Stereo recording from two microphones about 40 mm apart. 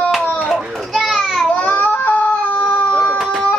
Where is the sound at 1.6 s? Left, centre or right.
Left.